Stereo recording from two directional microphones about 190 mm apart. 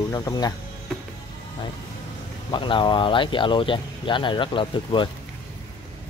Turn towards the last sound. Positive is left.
turn(degrees=25)  # may be behind; listen again after turning